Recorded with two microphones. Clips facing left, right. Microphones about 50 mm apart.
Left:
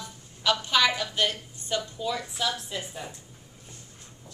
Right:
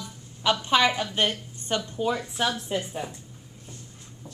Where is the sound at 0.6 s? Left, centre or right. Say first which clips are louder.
Right 4 dB; right.